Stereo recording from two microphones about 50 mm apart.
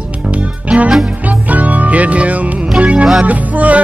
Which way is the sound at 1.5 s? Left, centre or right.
Right.